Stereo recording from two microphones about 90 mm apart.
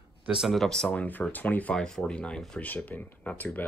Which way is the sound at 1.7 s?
5° left (ahead or behind).